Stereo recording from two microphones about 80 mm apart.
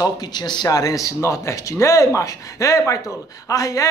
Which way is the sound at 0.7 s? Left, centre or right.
Left.